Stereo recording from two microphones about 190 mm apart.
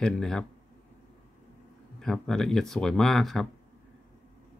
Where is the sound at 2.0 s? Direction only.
Centre (ahead or behind).